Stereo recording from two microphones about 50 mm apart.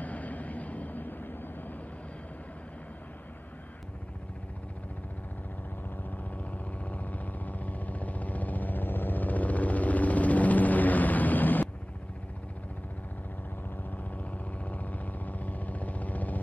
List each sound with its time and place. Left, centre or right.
0.0 s vehicle: left
6.0 s vehicle: left
14.6 s vehicle: left